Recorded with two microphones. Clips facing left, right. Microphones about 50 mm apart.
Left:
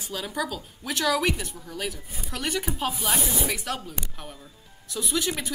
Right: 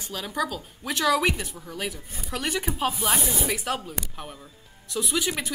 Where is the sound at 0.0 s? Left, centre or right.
Centre.